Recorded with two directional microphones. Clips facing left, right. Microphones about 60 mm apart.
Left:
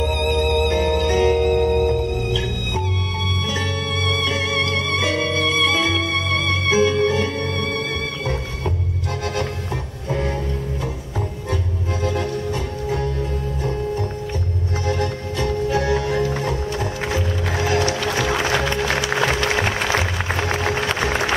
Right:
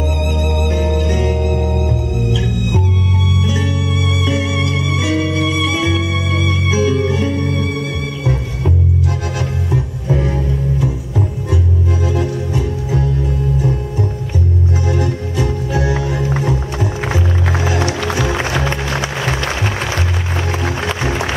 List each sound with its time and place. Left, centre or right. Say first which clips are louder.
0.0 s music: even; left
0.4 s music: left 2 dB; centre
0.7 s music: right 1 dB; left
1.0 s music: left 2 dB; centre
1.7 s music: left 2 dB; left
3.4 s music: right 4 dB; centre
10.0 s music: right 3 dB; centre
14.9 s music: right 3 dB; centre